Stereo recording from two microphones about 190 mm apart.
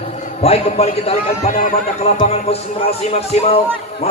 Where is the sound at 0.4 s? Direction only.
35° left (ahead or behind).